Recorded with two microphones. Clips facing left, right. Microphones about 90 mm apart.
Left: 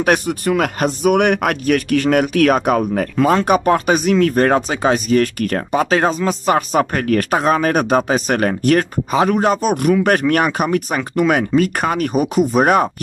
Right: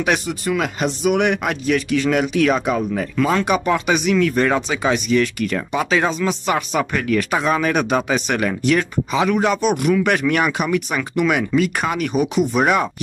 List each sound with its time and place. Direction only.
0.0 s speech: 50° left (ahead or behind)